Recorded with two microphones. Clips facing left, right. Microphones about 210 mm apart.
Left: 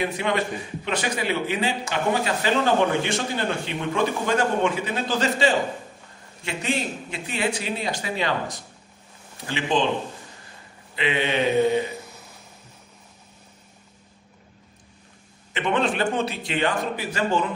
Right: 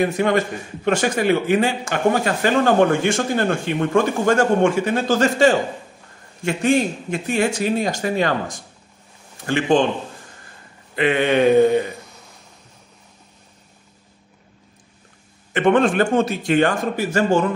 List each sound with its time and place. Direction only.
0.0 s a man's voice: 45° right (ahead or behind)
11.0 s a man's voice: 50° right (ahead or behind)
15.5 s a man's voice: 45° right (ahead or behind)